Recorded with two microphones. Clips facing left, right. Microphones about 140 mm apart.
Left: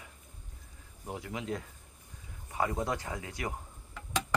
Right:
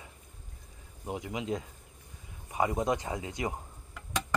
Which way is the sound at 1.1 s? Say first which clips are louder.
Right 3 dB; 20° right (ahead or behind).